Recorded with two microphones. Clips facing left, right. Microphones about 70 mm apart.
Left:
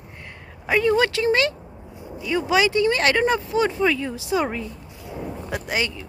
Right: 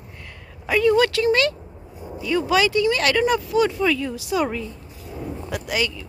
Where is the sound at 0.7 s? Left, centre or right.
Left.